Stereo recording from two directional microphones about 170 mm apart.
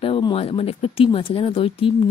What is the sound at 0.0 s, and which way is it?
Speech, 35° left (ahead or behind).